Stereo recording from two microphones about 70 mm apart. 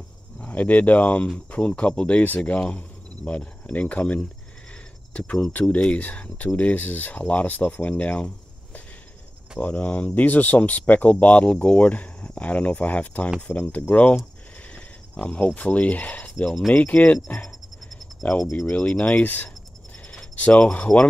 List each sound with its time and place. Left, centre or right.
0.4 s speech: left
9.6 s speech: centre
15.1 s speech: centre
18.5 s speech: centre